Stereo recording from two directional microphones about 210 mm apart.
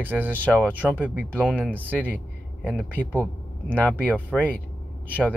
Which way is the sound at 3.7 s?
5° left (ahead or behind).